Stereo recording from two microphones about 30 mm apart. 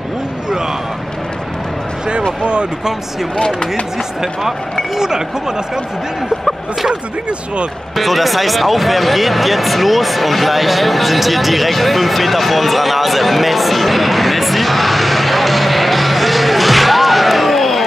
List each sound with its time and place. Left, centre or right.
3.3 s speech: centre
4.2 s speech: centre
4.9 s speech: centre
7.9 s speech: centre